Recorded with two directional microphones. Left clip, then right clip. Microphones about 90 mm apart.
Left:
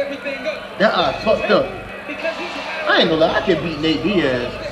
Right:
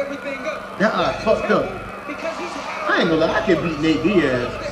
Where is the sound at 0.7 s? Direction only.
10° right (ahead or behind).